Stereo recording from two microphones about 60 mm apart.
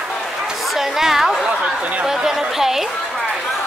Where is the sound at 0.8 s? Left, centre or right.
Centre.